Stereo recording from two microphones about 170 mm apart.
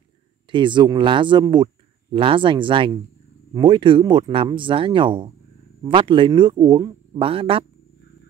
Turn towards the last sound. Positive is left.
turn(degrees=-30)  # may be behind; listen again after turning